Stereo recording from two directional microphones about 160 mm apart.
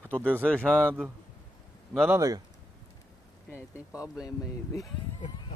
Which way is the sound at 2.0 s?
20° right (ahead or behind).